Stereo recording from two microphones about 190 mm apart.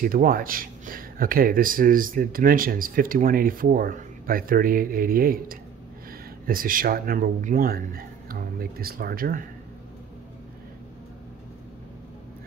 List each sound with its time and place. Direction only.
0.0 s speech: 45° right (ahead or behind)